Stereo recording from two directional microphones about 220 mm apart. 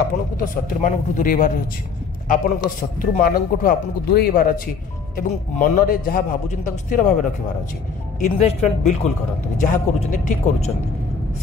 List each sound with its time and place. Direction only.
0.4 s a man's voice: 35° left (ahead or behind)
8.2 s a man's voice: 30° left (ahead or behind)